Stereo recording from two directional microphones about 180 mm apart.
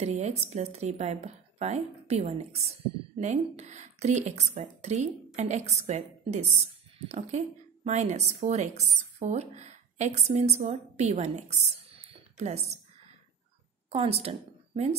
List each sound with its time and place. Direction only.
0.0 s a woman's voice: 35° right (ahead or behind)
13.8 s a woman's voice: 35° right (ahead or behind)